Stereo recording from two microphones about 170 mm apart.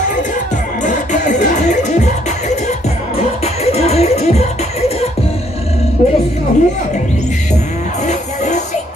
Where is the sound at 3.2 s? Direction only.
40° left (ahead or behind).